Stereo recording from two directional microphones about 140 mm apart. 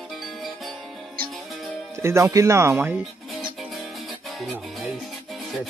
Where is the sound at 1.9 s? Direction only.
20° right (ahead or behind).